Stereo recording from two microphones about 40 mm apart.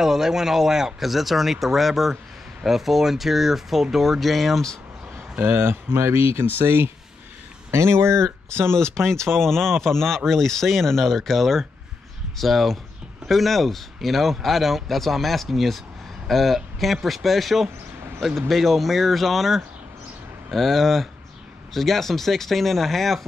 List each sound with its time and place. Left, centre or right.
0.0 s speech: centre
5.5 s speech: right
7.7 s speech: right
8.7 s speech: centre